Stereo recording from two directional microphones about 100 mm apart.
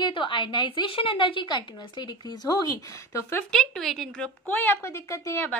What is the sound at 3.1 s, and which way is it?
Speech, 25° left (ahead or behind).